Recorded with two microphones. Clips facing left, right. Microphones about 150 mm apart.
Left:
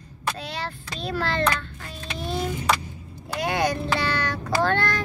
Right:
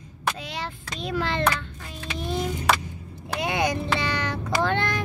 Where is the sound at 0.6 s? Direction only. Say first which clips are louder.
Left 1 dB; 15° right (ahead or behind).